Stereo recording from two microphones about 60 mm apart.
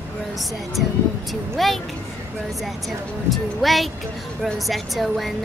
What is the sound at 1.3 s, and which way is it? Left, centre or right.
Speech, centre.